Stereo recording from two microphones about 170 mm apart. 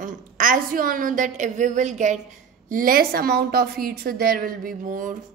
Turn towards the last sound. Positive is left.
turn(degrees=-50)  # may be behind; listen again after turning